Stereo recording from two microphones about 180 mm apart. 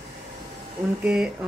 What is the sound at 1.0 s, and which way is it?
Speech, 5° right (ahead or behind).